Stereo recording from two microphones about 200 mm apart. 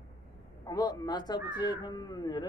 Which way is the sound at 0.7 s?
20° left (ahead or behind).